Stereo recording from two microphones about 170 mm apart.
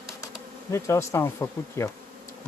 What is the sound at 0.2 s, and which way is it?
Speech, 15° left (ahead or behind).